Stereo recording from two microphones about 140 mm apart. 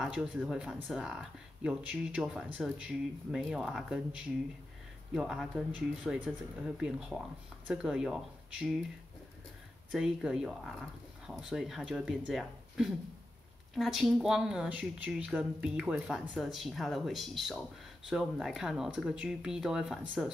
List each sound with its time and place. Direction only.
0.0 s a woman's voice: 5° right (ahead or behind)
9.8 s a woman's voice: 5° right (ahead or behind)